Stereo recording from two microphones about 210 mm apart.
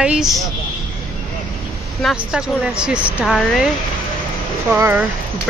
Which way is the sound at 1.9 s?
Centre (ahead or behind).